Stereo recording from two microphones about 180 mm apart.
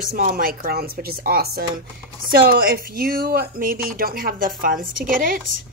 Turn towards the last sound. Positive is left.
turn(degrees=-50)  # may be behind; listen again after turning